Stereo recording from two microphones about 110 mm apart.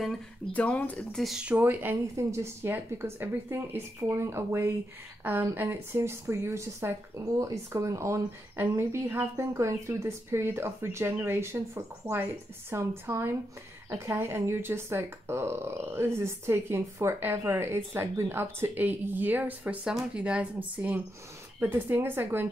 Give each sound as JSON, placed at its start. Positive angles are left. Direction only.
{"t": 0.5, "sound": "speech", "side_deg": 15}
{"t": 1.4, "sound": "speech", "side_deg": -15}